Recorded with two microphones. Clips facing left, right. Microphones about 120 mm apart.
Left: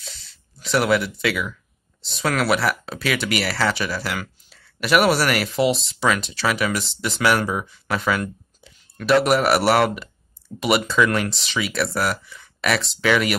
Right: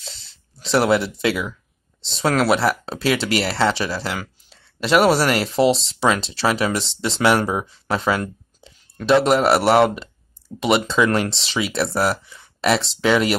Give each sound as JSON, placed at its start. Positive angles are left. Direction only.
{"t": 0.6, "sound": "speech", "side_deg": -30}